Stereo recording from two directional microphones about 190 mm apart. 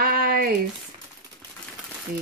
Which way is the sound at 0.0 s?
55° right (ahead or behind).